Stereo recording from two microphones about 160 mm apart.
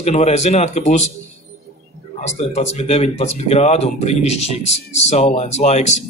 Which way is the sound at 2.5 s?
40° left (ahead or behind).